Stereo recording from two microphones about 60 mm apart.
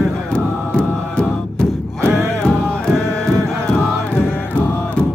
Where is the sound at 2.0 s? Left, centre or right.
Right.